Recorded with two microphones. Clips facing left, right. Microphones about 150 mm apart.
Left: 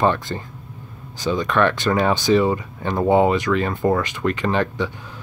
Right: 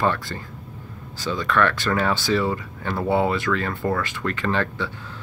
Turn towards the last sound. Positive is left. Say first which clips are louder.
# left 3 dB
turn(degrees=15)  # may be behind; listen again after turning